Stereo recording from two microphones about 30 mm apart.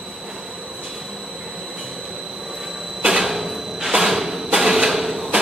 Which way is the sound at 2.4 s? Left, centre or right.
Centre.